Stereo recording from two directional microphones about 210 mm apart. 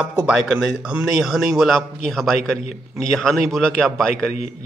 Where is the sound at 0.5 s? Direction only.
5° right (ahead or behind).